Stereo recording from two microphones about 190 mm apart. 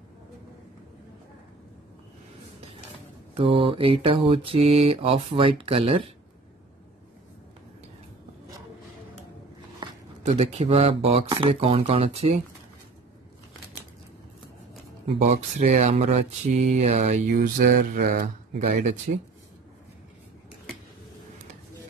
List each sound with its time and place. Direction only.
3.3 s mantra: 30° right (ahead or behind)
9.8 s a sound: 25° right (ahead or behind)
10.2 s speech: 35° right (ahead or behind)
15.0 s speech: 35° right (ahead or behind)
17.3 s speech: 50° right (ahead or behind)